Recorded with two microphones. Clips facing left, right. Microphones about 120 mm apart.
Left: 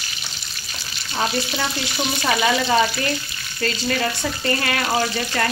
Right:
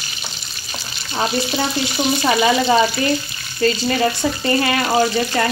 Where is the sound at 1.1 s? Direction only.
20° right (ahead or behind).